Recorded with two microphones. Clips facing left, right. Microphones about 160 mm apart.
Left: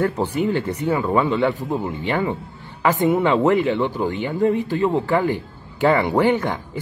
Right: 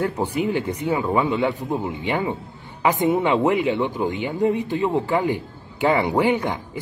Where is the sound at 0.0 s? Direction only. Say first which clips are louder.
Left 2 dB; 15° right (ahead or behind).